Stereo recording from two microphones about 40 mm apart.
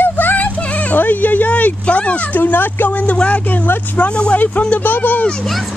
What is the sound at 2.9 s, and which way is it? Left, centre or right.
Speech, left.